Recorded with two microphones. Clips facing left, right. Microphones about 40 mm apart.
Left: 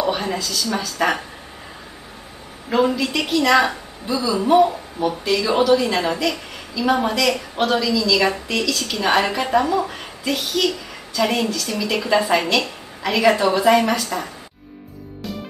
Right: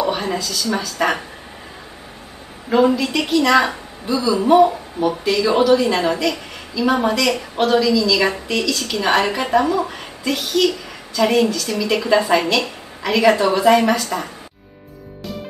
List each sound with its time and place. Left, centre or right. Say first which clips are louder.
0.0 s a woman's voice: right 1 dB; centre
2.7 s a woman's voice: right 3 dB; centre